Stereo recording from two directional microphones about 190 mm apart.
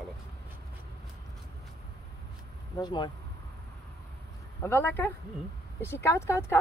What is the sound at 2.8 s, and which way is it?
Speech, 25° left (ahead or behind).